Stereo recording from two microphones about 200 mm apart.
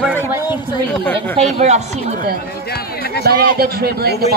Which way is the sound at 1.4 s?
30° right (ahead or behind).